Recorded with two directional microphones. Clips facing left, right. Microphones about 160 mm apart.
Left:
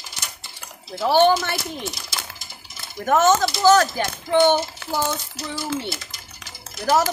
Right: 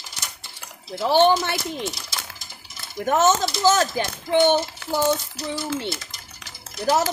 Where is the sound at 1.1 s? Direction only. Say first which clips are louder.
Left 1 dB; 20° right (ahead or behind).